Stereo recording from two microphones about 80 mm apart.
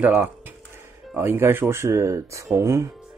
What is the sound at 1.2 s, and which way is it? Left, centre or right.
Speech, right.